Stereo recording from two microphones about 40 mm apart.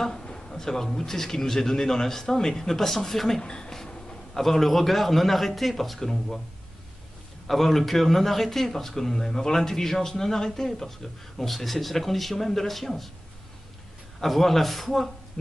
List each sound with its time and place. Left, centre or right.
0.2 s speech: centre
3.4 s speech: centre
4.3 s a man's voice: centre
7.4 s a man's voice: centre
14.2 s a man's voice: centre